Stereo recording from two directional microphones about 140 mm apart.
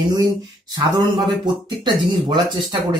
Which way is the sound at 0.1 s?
30° right (ahead or behind).